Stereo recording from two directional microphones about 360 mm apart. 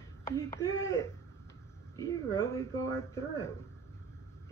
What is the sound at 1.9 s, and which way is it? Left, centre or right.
Speech, centre.